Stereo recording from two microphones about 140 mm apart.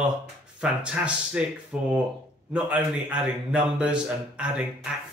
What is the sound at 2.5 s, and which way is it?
A man's voice, 10° right (ahead or behind).